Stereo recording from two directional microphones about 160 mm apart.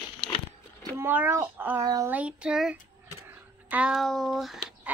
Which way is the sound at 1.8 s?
25° right (ahead or behind).